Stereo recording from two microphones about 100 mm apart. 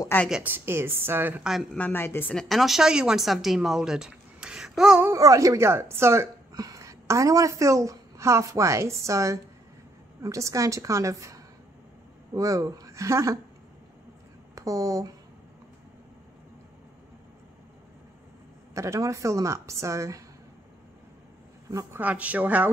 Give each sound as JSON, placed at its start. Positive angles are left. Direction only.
{"t": 0.3, "sound": "a woman's voice", "side_deg": -20}
{"t": 1.8, "sound": "a woman's voice", "side_deg": 20}
{"t": 2.3, "sound": "speech", "side_deg": 0}
{"t": 5.0, "sound": "a woman's voice", "side_deg": -35}
{"t": 14.5, "sound": "speech", "side_deg": -35}
{"t": 18.8, "sound": "a woman's voice", "side_deg": -30}
{"t": 21.6, "sound": "a woman's voice", "side_deg": -30}
{"t": 22.0, "sound": "speech", "side_deg": -15}